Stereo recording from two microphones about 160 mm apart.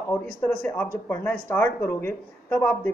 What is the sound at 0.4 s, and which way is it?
Speech, 10° left (ahead or behind).